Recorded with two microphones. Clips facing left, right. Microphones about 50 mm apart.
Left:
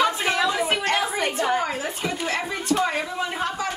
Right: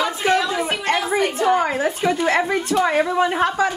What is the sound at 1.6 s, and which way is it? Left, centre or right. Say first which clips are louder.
Speech: right 7 dB; right.